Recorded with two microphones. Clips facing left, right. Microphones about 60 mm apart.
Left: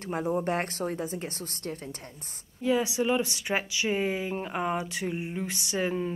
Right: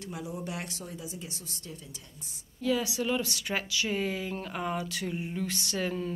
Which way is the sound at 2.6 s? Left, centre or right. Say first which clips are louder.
Left 3 dB; left.